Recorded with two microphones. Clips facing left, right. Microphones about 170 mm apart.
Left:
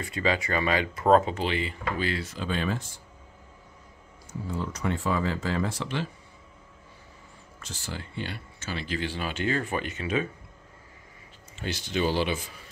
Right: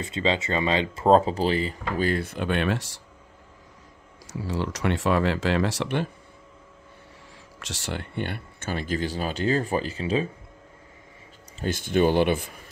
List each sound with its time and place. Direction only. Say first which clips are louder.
0.0 s speech: right 2 dB; 25° right (ahead or behind); by 3.0 s 75° right (ahead or behind)
4.3 s speech: right 4 dB; 90° right; by 6.0 s 70° right (ahead or behind)
7.5 s speech: right 5 dB; 85° right; by 10.3 s 30° right (ahead or behind)
11.6 s speech: right 6 dB; 50° right (ahead or behind)